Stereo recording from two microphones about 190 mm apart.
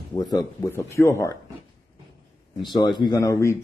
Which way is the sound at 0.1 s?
20° left (ahead or behind).